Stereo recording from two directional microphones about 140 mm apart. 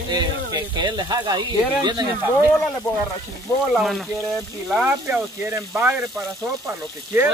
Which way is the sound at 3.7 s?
Centre (ahead or behind).